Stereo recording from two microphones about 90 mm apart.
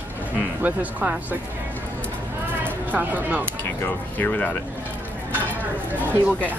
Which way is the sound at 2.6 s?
20° right (ahead or behind).